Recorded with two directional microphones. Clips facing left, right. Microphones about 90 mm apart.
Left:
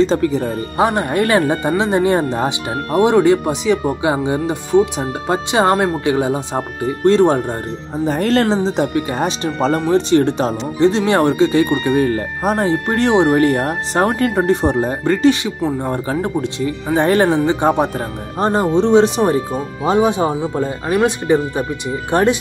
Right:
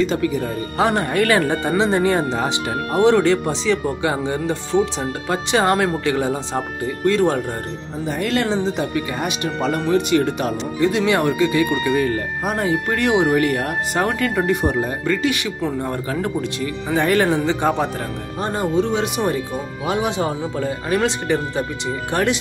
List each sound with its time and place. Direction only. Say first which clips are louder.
0.0 s speech: left 4 dB; 30° left (ahead or behind)
8.0 s speech: left 6 dB; 40° left (ahead or behind)
15.6 s speech: left 5 dB; 20° left (ahead or behind)
18.4 s speech: left 5 dB; 35° left (ahead or behind)